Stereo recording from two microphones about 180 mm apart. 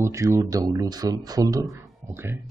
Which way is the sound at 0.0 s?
15° right (ahead or behind).